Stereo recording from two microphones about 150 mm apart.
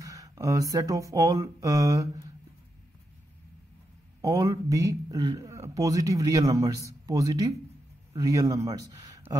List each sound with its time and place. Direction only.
0.0 s speech: 25° right (ahead or behind)
4.2 s a man's voice: 25° right (ahead or behind)